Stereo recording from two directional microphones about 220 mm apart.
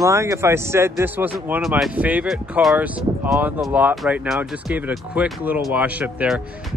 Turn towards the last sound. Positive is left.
turn(degrees=-5)  # may be behind; listen again after turning